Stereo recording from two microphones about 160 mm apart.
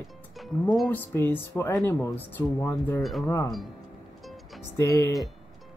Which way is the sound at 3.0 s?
Centre (ahead or behind).